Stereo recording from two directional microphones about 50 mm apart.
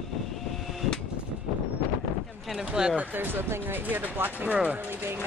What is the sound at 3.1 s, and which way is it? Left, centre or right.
Speech, right.